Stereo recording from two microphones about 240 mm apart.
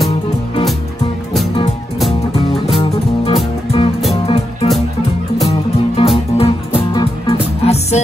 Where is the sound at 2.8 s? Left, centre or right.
Left.